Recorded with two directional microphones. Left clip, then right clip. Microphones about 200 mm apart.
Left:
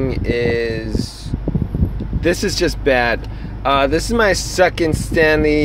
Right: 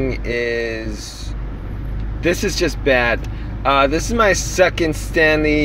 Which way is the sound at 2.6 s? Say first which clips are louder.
Even; 10° left (ahead or behind).